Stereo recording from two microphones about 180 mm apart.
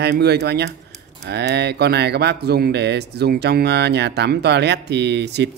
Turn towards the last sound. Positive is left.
turn(degrees=-70)  # may be behind; listen again after turning